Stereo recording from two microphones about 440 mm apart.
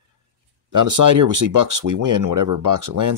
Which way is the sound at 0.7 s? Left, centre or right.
Right.